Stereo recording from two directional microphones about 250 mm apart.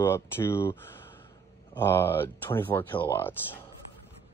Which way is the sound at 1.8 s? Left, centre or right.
Centre.